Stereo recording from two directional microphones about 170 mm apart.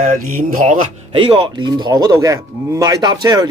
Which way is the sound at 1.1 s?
30° right (ahead or behind).